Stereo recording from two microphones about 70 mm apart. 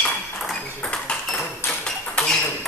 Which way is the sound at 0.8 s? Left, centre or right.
Centre.